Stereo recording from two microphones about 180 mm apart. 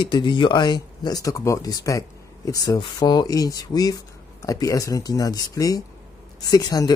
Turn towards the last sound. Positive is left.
turn(degrees=20)  # may be behind; listen again after turning